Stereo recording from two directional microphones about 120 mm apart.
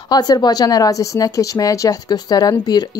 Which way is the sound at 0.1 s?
35° left (ahead or behind).